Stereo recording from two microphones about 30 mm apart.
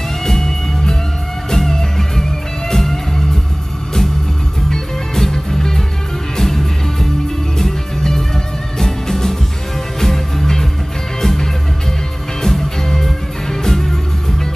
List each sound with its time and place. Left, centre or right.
0.2 s music: centre
4.6 s music: centre